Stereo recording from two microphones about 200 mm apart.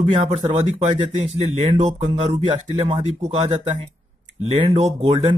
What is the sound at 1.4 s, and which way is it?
Speech, 30° right (ahead or behind).